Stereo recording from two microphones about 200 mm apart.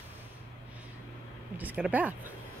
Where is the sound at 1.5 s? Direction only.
10° right (ahead or behind).